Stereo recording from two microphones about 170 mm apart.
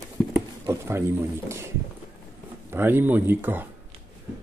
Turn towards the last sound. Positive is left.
turn(degrees=-10)  # may be behind; listen again after turning